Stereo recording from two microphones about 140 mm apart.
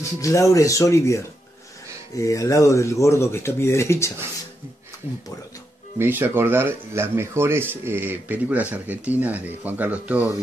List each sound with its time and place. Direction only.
0.0 s speech: 25° left (ahead or behind)
5.9 s speech: 15° right (ahead or behind)